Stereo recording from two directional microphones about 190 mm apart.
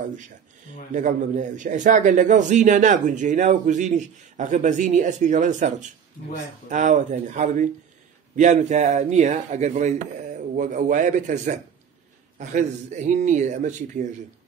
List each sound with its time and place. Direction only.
0.9 s a man's voice: 40° right (ahead or behind)